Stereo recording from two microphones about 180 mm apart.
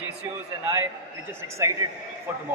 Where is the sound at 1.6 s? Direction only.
15° right (ahead or behind).